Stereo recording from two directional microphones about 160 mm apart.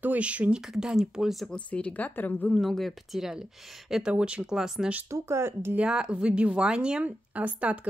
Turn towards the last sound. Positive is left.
turn(degrees=-10)  # may be behind; listen again after turning